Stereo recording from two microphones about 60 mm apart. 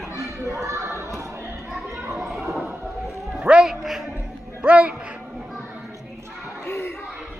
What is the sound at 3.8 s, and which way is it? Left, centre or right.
Music, centre.